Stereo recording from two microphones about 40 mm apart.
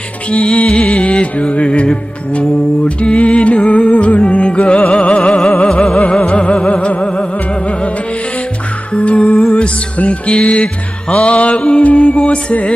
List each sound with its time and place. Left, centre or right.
0.3 s music: left
8.9 s music: left
12.2 s music: left